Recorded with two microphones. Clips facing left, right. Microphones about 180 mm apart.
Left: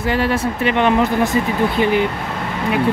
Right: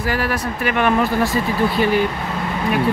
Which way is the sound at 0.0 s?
25° left (ahead or behind).